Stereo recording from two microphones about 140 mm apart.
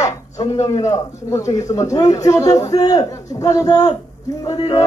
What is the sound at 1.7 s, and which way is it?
A man's voice, 25° left (ahead or behind).